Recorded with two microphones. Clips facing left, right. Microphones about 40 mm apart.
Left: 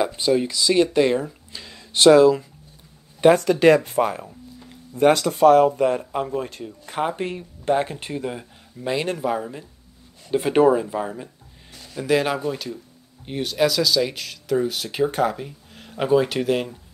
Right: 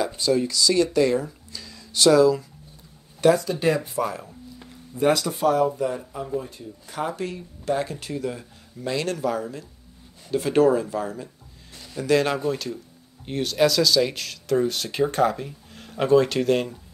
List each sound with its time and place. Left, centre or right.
0.0 s speech: left
1.2 s a sound: left
3.3 s speech: left
6.9 s speech: left
11.7 s speech: centre